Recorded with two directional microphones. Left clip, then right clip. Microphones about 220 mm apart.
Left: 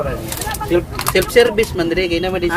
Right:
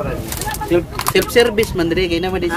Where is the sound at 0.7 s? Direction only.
35° right (ahead or behind).